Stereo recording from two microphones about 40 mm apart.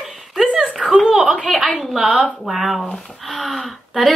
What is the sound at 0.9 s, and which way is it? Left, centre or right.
A woman's voice, centre.